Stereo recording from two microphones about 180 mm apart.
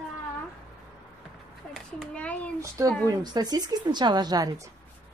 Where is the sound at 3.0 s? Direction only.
20° right (ahead or behind).